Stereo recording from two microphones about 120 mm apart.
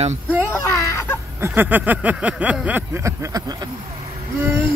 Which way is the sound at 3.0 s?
25° right (ahead or behind).